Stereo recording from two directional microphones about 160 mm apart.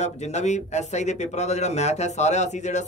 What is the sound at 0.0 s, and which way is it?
Speech, 45° left (ahead or behind).